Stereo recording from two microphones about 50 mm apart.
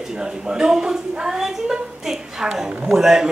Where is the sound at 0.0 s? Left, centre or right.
Centre.